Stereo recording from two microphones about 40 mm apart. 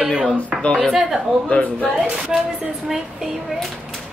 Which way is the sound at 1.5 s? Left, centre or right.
Left.